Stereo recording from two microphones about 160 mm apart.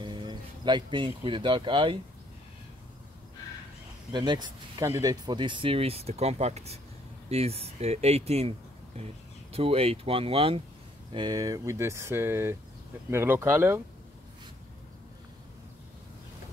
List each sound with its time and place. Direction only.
0.0 s speech: 30° right (ahead or behind)
4.1 s speech: 30° right (ahead or behind)